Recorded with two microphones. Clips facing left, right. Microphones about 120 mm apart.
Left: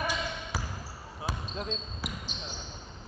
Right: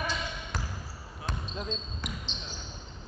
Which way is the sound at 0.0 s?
10° left (ahead or behind).